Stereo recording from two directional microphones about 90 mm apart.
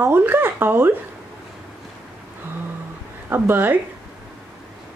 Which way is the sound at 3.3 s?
25° right (ahead or behind).